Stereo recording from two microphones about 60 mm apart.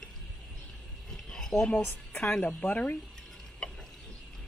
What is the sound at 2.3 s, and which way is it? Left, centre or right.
Speech, left.